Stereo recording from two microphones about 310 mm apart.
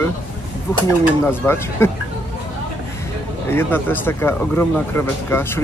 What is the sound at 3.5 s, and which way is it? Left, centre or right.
Speech, centre.